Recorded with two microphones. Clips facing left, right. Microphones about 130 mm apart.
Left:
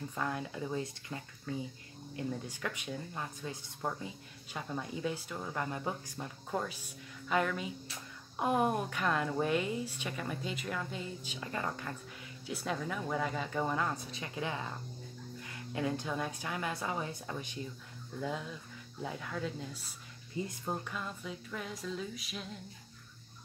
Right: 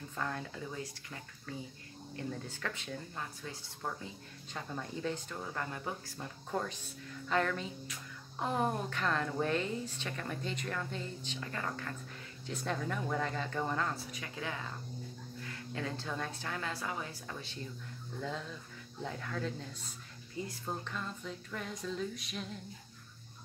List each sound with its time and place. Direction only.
0.1 s a woman's voice: 10° left (ahead or behind)
6.5 s a woman's voice: 5° left (ahead or behind)